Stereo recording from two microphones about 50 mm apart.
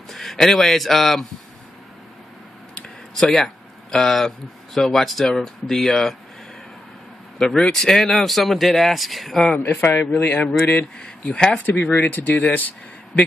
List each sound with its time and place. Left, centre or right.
0.1 s speech: centre
2.7 s a sound: centre
4.7 s speech: centre
7.3 s speech: centre
9.6 s a man's voice: left
11.0 s speech: centre
11.5 s speech: left